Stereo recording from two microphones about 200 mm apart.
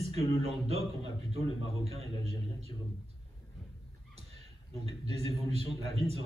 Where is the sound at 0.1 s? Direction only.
30° right (ahead or behind).